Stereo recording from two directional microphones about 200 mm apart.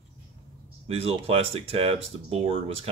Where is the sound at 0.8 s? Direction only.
30° right (ahead or behind).